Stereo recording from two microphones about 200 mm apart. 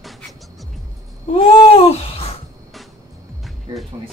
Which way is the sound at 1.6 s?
30° left (ahead or behind).